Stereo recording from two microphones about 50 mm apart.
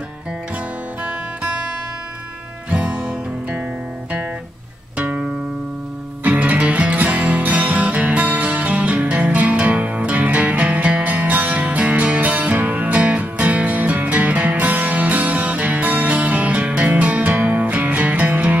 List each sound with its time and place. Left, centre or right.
2.7 s music: right
4.9 s music: right
6.2 s music: right